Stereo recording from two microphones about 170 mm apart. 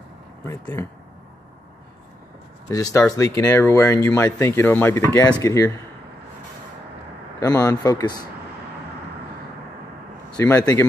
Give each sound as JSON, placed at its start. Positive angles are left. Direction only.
{"t": 0.5, "sound": "speech", "side_deg": 15}
{"t": 2.7, "sound": "speech", "side_deg": 20}
{"t": 7.3, "sound": "speech", "side_deg": 20}
{"t": 10.3, "sound": "a man's voice", "side_deg": 10}
{"t": 10.6, "sound": "speech", "side_deg": 25}